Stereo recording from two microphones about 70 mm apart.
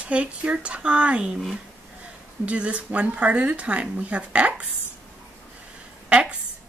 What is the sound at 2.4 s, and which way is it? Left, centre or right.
Speech, centre.